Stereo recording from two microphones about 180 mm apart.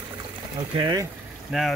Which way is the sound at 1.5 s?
5° right (ahead or behind).